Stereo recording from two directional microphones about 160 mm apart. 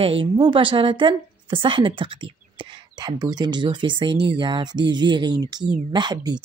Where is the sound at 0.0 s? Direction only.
35° right (ahead or behind).